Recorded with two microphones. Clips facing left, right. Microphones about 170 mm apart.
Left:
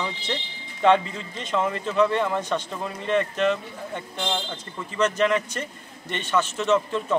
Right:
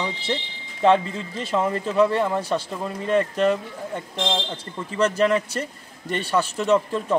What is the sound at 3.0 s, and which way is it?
Speech, 40° right (ahead or behind).